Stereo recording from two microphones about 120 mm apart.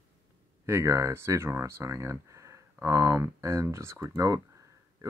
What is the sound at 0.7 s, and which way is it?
Speech, 25° right (ahead or behind).